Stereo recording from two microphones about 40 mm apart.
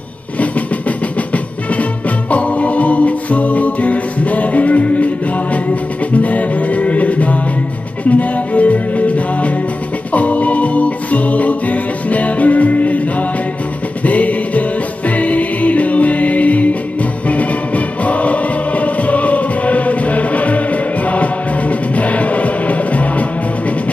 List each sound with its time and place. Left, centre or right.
0.4 s music: left
14.0 s music: left